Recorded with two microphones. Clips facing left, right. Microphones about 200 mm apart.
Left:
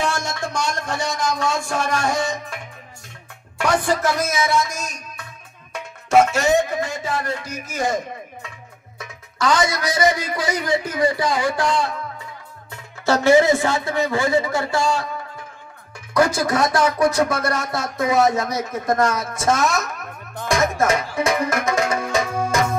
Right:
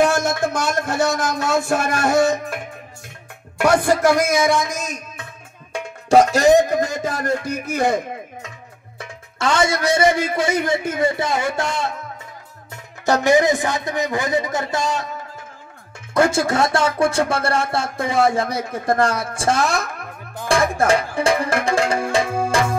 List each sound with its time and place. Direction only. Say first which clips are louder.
0.3 s speech: right 4 dB; 5° right (ahead or behind)
2.1 s music: right 8 dB; 60° right (ahead or behind)
3.6 s a man's voice: right 4 dB; 10° right (ahead or behind)
5.7 s music: right 4 dB; 30° right (ahead or behind); by 8.5 s 60° right (ahead or behind)
8.9 s speech: even; 30° right (ahead or behind)
13.0 s a man's voice: left 1 dB; 15° right (ahead or behind)
16.1 s speech: right 1 dB; 25° right (ahead or behind)
20.4 s music: right 2 dB; 30° right (ahead or behind)